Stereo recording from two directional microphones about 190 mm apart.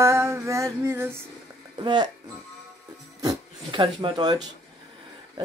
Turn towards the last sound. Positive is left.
turn(degrees=-20)  # may be behind; listen again after turning